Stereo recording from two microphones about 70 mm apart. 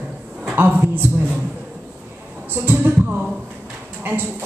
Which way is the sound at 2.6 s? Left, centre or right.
Right.